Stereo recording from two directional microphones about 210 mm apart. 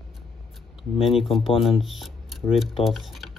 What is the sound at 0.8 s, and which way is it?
Speech, centre (ahead or behind).